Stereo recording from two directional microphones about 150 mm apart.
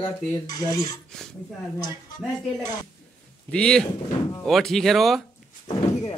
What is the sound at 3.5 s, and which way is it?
A man's voice, 5° left (ahead or behind).